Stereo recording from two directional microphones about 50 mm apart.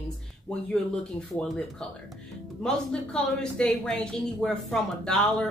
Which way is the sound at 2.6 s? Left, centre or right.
Centre.